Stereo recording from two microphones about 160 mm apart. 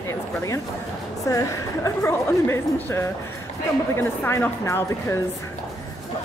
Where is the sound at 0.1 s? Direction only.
20° left (ahead or behind).